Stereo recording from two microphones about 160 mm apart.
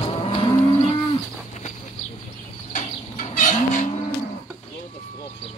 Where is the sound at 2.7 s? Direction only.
50° left (ahead or behind).